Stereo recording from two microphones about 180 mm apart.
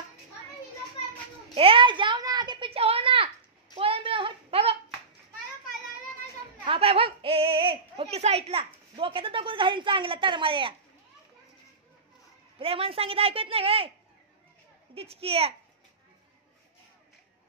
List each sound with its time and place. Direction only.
1.5 s a child's voice: 30° right (ahead or behind)
3.7 s a sound: 30° right (ahead or behind)
6.6 s a child's voice: 30° right (ahead or behind)
12.5 s speech: 30° right (ahead or behind)
15.0 s speech: 35° right (ahead or behind)